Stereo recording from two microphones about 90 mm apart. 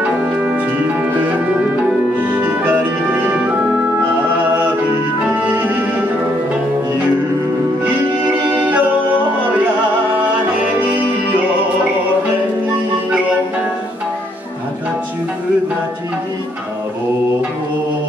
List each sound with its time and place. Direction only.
1.9 s music: 20° right (ahead or behind)
5.3 s music: 20° right (ahead or behind)
8.5 s music: 15° right (ahead or behind)